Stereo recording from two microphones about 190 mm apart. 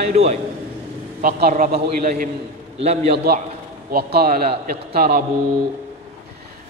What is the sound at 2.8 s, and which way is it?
Speech, 35° right (ahead or behind).